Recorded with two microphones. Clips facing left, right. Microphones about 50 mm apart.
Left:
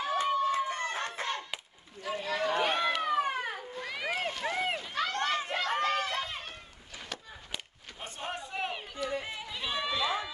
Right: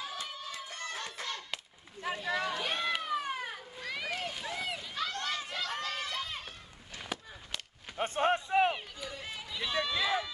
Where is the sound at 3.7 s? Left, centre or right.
Centre.